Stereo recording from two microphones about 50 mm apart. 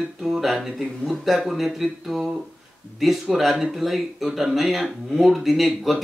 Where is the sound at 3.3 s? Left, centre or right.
Centre.